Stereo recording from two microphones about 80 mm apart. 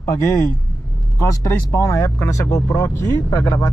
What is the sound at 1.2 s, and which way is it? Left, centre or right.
Speech, left.